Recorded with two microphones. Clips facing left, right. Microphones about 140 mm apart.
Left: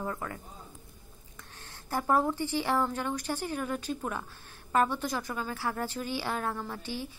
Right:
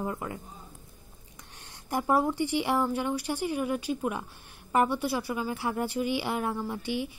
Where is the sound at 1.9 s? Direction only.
15° right (ahead or behind).